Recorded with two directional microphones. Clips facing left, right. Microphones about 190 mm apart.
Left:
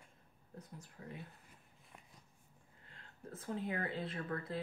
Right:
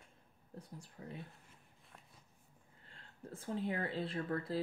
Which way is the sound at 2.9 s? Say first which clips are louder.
Right 1 dB; 30° right (ahead or behind).